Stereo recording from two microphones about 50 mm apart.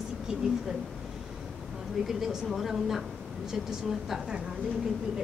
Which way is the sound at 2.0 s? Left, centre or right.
Centre.